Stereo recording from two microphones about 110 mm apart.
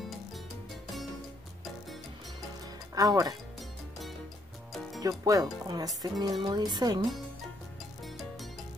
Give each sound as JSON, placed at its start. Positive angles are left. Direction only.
{"t": 2.9, "sound": "speech", "side_deg": -35}
{"t": 5.0, "sound": "speech", "side_deg": -35}
{"t": 8.0, "sound": "music", "side_deg": 0}